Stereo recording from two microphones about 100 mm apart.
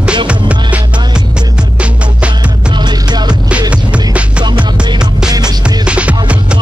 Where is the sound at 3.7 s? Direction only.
10° right (ahead or behind).